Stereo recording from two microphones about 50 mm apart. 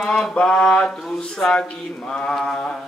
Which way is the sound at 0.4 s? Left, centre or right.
Centre.